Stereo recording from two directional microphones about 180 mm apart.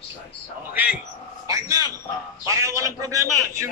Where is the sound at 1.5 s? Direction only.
20° right (ahead or behind).